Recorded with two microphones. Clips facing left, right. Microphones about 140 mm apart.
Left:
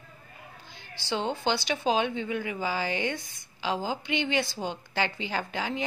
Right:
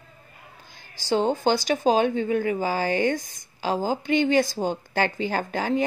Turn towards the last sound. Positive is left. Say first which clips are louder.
# right 7 dB
turn(degrees=-45)  # may be behind; listen again after turning